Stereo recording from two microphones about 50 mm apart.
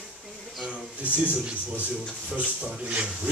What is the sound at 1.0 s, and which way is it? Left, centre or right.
Speech, right.